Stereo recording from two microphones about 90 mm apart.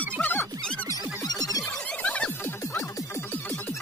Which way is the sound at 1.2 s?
45° left (ahead or behind).